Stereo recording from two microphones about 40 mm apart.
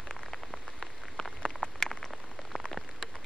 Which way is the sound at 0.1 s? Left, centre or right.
Centre.